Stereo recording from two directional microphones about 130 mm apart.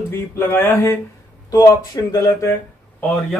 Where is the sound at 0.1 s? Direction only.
15° left (ahead or behind).